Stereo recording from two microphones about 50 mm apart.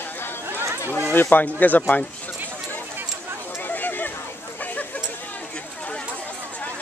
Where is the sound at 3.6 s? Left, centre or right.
Left.